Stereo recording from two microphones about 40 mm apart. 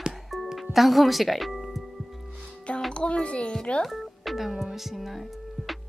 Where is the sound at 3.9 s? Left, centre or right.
Centre.